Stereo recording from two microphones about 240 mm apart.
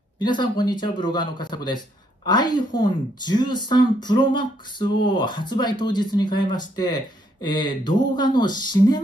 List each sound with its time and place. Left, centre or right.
0.2 s speech: centre